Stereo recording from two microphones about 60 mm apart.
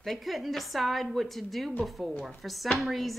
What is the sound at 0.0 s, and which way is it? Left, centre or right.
Speech, centre.